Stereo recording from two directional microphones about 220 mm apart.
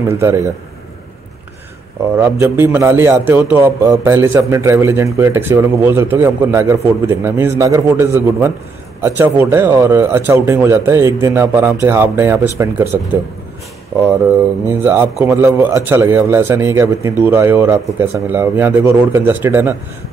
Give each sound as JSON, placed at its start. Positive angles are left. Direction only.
{"t": 0.1, "sound": "a man's voice", "side_deg": -10}
{"t": 2.1, "sound": "a man's voice", "side_deg": -15}